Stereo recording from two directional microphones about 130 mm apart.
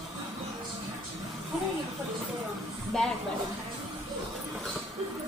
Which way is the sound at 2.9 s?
5° left (ahead or behind).